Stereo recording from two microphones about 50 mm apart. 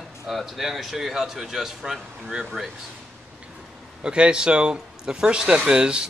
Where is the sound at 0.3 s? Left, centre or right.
Centre.